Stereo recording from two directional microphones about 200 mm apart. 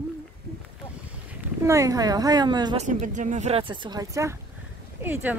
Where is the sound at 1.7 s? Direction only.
15° right (ahead or behind).